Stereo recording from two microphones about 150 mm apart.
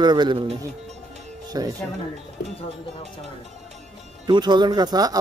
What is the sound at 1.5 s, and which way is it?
Speech, 25° right (ahead or behind).